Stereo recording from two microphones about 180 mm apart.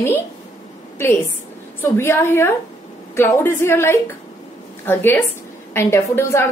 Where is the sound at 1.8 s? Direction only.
15° left (ahead or behind).